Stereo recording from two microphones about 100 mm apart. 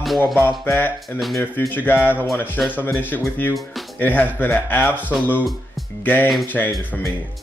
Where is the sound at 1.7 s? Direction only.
20° left (ahead or behind).